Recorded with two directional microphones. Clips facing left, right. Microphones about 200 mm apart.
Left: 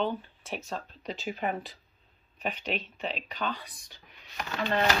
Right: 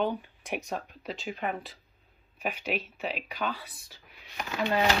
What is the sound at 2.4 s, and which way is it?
Speech, 10° right (ahead or behind).